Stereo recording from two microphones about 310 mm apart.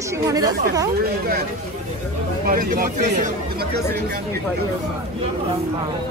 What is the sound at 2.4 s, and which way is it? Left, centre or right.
Speech, right.